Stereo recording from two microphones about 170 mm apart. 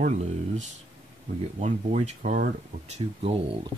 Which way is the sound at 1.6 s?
40° right (ahead or behind).